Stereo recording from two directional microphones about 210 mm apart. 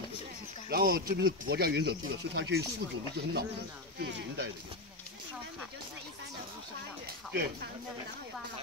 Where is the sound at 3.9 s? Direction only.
55° right (ahead or behind).